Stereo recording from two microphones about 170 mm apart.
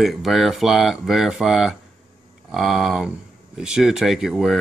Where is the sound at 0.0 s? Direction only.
Centre (ahead or behind).